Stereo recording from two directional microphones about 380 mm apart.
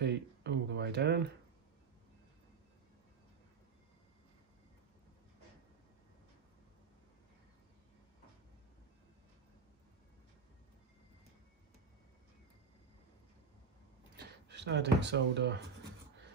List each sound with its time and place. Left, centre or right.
0.0 s speech: right
14.1 s speech: right